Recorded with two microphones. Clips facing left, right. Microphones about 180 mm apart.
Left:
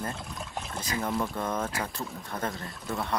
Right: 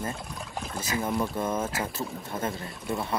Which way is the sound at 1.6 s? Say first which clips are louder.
Right 2 dB; 25° right (ahead or behind).